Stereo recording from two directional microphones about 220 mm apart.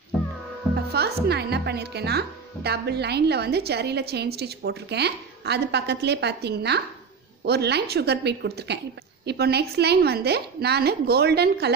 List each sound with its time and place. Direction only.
0.9 s speech: 45° right (ahead or behind)